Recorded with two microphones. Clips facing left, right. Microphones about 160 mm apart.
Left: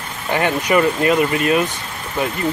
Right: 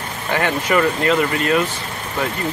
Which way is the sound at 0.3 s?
20° left (ahead or behind).